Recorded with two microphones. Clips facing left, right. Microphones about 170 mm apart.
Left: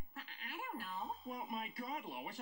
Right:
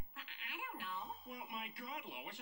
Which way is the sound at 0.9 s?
Centre (ahead or behind).